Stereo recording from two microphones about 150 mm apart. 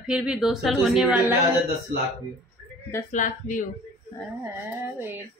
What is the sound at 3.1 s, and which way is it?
Speech, 60° left (ahead or behind).